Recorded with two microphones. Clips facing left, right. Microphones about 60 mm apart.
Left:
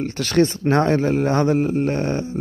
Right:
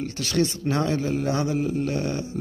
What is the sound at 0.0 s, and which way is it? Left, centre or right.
Speech, left.